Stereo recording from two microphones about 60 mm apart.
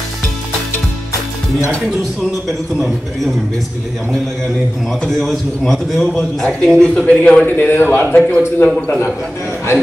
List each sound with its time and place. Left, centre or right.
2.4 s a man's voice: centre
5.0 s a man's voice: centre
7.1 s a man's voice: left
7.4 s a man's voice: left
8.6 s a man's voice: left